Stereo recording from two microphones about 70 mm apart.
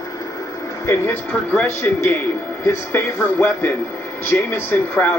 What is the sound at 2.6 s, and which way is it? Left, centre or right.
Speech, left.